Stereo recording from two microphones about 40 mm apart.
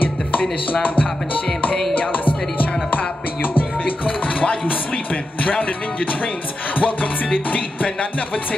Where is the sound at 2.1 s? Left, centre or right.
Left.